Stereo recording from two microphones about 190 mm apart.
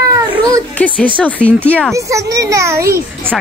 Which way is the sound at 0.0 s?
15° right (ahead or behind).